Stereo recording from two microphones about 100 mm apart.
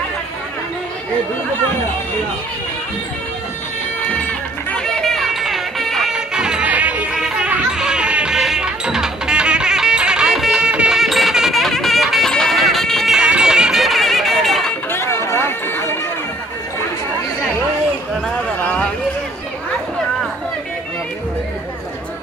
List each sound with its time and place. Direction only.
4.1 s music: 15° left (ahead or behind); by 7.2 s 15° right (ahead or behind)
7.2 s music: 5° right (ahead or behind)
14.9 s run: 25° left (ahead or behind)
18.6 s a sound: 15° left (ahead or behind)